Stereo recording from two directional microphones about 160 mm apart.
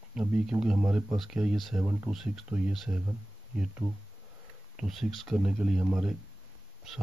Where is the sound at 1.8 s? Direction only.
15° right (ahead or behind).